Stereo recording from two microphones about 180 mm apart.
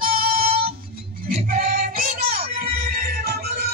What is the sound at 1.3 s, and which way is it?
Music, 50° right (ahead or behind).